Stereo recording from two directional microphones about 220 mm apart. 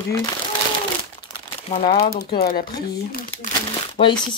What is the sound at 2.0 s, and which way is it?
Speech, 45° left (ahead or behind).